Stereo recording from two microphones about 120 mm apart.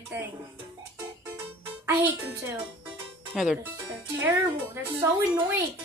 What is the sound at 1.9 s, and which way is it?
Speech, 20° right (ahead or behind).